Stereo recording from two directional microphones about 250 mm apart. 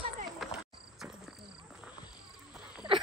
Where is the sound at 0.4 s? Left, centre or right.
Centre.